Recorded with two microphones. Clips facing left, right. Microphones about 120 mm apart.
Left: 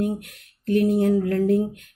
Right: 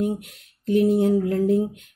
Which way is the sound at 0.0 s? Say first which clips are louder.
Even; 20° right (ahead or behind).